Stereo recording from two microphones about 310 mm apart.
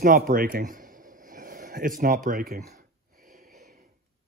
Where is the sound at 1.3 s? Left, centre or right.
Right.